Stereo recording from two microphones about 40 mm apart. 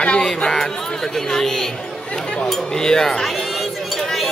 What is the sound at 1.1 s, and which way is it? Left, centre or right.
Speech, centre.